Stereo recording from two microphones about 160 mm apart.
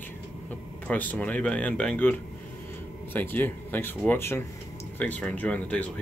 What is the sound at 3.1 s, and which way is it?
Speech, 10° left (ahead or behind).